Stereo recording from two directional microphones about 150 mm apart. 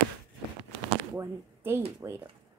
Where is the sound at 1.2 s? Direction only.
15° right (ahead or behind).